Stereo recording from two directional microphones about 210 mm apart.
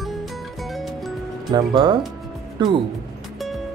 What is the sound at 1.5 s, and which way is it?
Speech, 20° right (ahead or behind).